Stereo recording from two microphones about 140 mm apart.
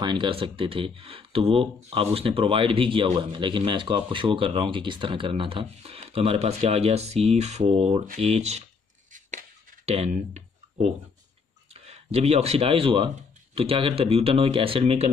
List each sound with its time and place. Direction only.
0.0 s speech: 35° right (ahead or behind); by 8.6 s 50° right (ahead or behind)
9.8 s speech: 50° right (ahead or behind)